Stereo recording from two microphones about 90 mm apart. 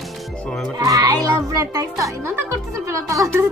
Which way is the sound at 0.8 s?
35° right (ahead or behind).